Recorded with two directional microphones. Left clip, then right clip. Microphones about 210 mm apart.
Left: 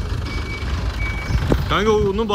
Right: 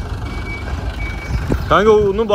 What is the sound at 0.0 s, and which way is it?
Reversing beeps, 20° right (ahead or behind).